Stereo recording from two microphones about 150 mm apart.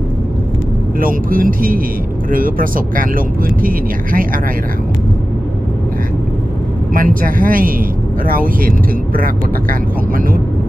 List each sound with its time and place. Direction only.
0.9 s speech: 65° right (ahead or behind)
6.9 s speech: 70° right (ahead or behind)